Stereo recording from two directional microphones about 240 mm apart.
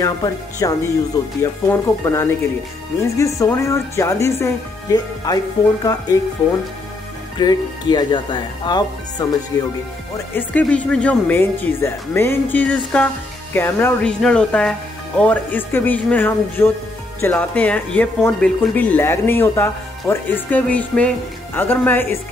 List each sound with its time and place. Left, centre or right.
0.0 s speech: centre
7.3 s speech: centre